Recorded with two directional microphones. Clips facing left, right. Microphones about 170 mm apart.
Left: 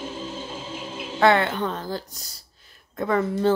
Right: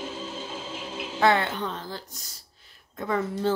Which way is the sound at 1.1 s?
65° left (ahead or behind).